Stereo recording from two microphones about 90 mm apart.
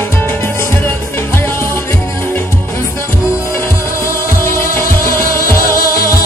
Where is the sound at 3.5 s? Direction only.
30° left (ahead or behind).